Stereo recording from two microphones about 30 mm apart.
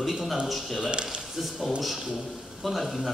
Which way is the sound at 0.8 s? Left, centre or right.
Right.